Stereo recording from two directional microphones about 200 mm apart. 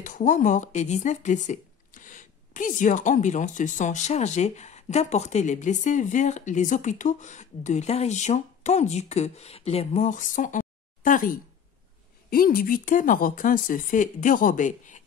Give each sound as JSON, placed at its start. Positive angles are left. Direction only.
{"t": 0.0, "sound": "speech", "side_deg": 40}